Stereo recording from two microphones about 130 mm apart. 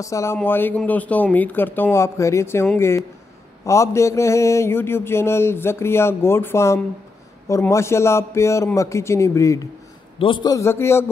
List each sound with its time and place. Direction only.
0.0 s speech: 25° left (ahead or behind)
3.6 s mantra: 25° left (ahead or behind)
10.1 s mantra: 40° left (ahead or behind); by 11.1 s 20° left (ahead or behind)